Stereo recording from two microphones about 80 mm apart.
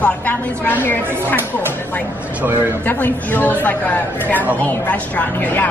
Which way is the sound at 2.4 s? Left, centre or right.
Right.